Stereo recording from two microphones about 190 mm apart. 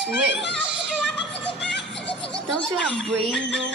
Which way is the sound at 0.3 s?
65° left (ahead or behind).